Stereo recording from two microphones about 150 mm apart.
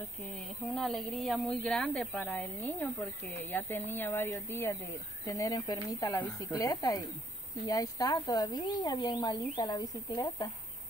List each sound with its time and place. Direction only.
0.7 s a woman's voice: centre (ahead or behind); by 10.5 s 25° left (ahead or behind)